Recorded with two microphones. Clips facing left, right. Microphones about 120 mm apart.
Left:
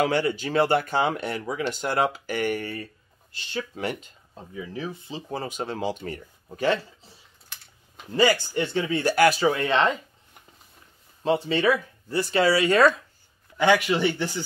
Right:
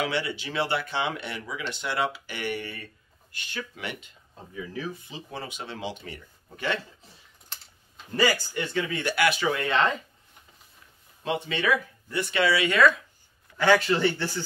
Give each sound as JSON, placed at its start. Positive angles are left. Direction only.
{"t": 0.0, "sound": "speech", "side_deg": 45}
{"t": 3.3, "sound": "speech", "side_deg": 25}
{"t": 3.8, "sound": "speech", "side_deg": 40}
{"t": 4.6, "sound": "speech", "side_deg": 25}
{"t": 8.2, "sound": "speech", "side_deg": 30}
{"t": 11.2, "sound": "speech", "side_deg": 35}
{"t": 13.6, "sound": "speech", "side_deg": 15}